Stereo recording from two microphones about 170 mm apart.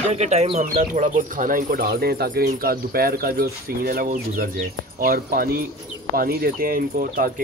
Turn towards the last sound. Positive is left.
turn(degrees=-60)  # may be behind; listen again after turning